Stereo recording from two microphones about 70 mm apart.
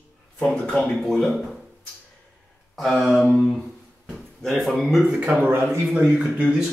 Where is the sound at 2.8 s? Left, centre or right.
Centre.